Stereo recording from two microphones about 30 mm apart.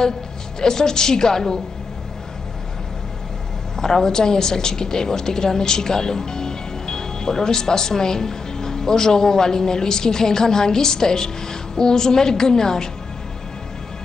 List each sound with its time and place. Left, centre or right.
0.6 s speech: centre
3.7 s speech: left